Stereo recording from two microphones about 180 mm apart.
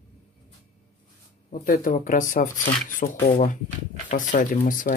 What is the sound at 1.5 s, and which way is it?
Speech, 50° left (ahead or behind).